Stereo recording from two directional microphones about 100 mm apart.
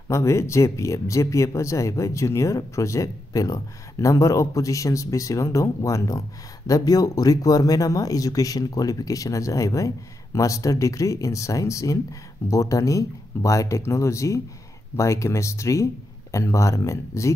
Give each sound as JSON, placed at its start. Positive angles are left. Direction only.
{"t": 0.1, "sound": "speech", "side_deg": 30}